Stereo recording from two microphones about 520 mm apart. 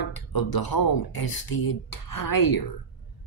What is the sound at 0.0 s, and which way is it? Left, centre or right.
Speech, left.